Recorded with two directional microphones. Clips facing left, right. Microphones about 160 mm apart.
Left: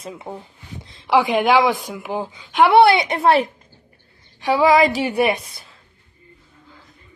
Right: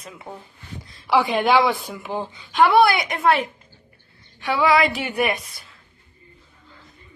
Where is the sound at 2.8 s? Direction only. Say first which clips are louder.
Left 4 dB; 25° left (ahead or behind).